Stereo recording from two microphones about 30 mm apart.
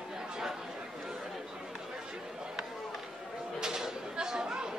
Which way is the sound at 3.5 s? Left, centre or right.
Centre.